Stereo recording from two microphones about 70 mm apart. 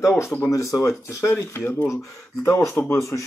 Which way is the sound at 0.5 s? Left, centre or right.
Left.